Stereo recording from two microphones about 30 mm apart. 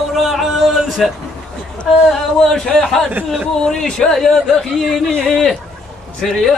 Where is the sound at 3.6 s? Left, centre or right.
Left.